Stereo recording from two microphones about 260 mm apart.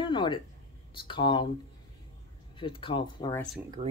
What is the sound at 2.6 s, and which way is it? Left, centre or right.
Speech, centre.